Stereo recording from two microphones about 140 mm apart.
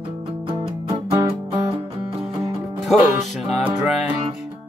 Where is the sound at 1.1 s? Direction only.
40° right (ahead or behind).